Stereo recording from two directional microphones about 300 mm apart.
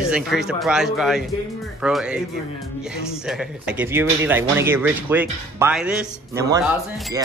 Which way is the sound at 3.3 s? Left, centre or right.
Centre.